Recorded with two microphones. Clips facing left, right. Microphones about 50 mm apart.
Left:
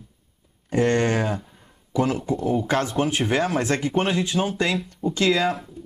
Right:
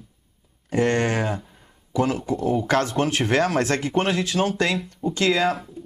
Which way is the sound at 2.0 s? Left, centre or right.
Right.